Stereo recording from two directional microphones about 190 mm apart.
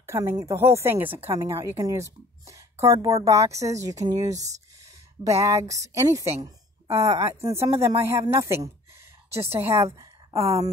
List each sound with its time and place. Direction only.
0.0 s a woman's voice: 15° right (ahead or behind)
5.2 s a woman's voice: 15° right (ahead or behind)